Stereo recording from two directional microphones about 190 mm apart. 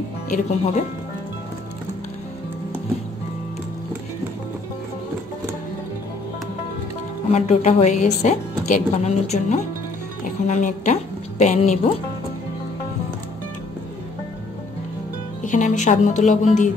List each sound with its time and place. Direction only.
0.3 s speech: 40° left (ahead or behind)
7.2 s a woman's voice: 35° left (ahead or behind)
15.4 s speech: 40° left (ahead or behind)